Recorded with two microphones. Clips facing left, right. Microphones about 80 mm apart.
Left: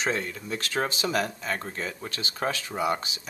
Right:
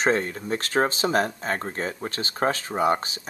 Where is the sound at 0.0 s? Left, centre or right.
Right.